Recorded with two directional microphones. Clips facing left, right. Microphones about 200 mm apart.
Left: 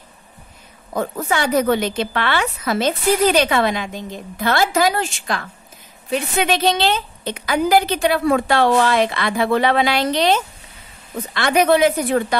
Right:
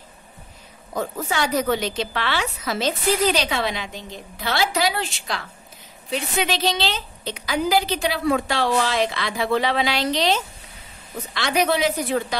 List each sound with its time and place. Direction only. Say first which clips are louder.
0.9 s a woman's voice: left 4 dB; 55° left (ahead or behind)